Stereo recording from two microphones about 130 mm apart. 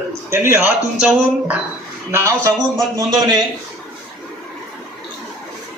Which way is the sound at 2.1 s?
20° right (ahead or behind).